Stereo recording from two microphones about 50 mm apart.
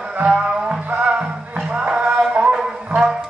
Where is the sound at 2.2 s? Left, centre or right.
Right.